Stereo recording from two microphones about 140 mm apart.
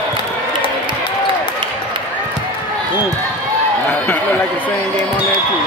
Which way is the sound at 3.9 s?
15° left (ahead or behind).